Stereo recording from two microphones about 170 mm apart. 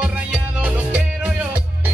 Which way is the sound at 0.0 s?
10° right (ahead or behind).